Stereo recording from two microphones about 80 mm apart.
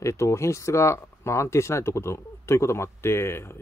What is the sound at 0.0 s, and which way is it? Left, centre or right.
Speech, left.